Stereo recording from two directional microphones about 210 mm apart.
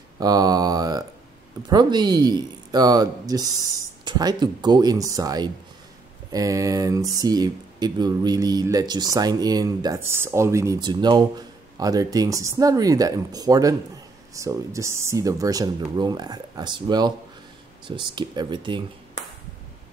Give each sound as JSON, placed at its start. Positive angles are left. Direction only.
{"t": 0.2, "sound": "speech", "side_deg": -20}